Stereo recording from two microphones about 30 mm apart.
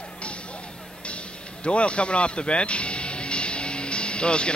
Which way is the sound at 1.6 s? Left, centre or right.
Left.